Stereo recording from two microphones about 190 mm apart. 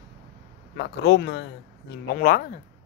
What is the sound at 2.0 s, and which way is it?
Speech, 50° left (ahead or behind).